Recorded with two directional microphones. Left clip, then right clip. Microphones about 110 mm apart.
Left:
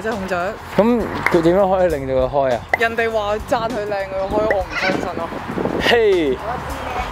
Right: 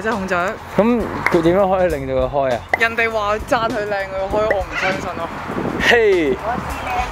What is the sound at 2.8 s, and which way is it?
Speech, 30° right (ahead or behind).